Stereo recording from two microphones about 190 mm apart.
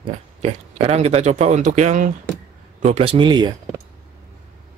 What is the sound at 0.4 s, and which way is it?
Speech, 35° right (ahead or behind).